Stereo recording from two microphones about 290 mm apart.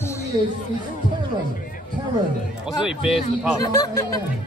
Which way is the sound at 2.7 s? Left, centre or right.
Centre.